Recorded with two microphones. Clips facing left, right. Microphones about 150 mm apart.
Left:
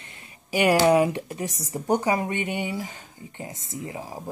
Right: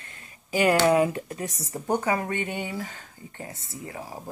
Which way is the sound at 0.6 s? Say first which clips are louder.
Left 2 dB; 15° left (ahead or behind).